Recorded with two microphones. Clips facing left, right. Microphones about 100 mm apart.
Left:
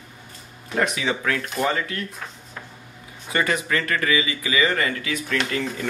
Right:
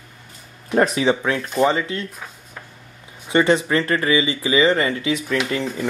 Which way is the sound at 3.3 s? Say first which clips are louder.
Right 6 dB; 25° right (ahead or behind).